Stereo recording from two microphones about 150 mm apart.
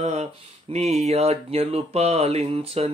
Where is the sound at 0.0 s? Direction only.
45° right (ahead or behind).